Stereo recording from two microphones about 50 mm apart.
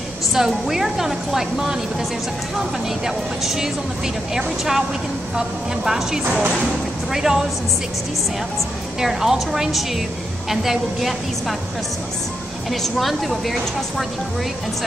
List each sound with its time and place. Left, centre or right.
0.3 s a woman's voice: centre
3.4 s a woman's voice: centre
5.9 s a woman's voice: centre
9.0 s a woman's voice: centre
12.8 s a woman's voice: centre